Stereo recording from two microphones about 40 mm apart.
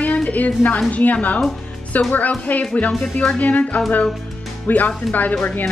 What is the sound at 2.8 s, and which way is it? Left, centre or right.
Speech, left.